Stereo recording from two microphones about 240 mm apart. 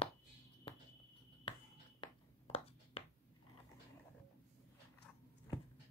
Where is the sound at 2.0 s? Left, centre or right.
Left.